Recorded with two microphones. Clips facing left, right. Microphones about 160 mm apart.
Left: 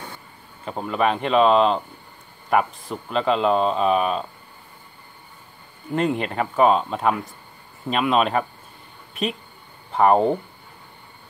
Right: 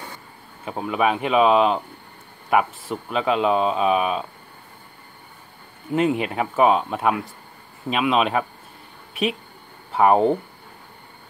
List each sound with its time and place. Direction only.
0.7 s speech: 5° right (ahead or behind)
5.9 s speech: 5° right (ahead or behind)